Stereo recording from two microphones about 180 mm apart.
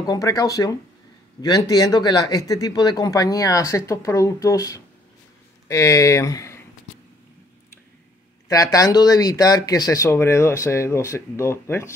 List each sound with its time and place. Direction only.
0.0 s speech: 20° left (ahead or behind)
8.5 s speech: 20° left (ahead or behind)